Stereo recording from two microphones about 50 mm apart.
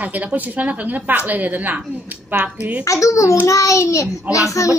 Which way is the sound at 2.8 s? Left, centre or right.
Left.